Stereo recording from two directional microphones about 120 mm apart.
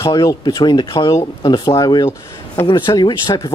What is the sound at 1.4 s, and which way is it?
Speech, 35° left (ahead or behind).